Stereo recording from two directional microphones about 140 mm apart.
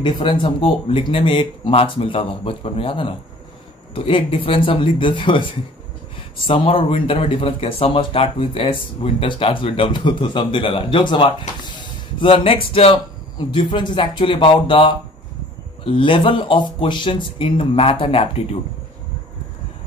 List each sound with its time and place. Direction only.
0.0 s speech: 35° left (ahead or behind)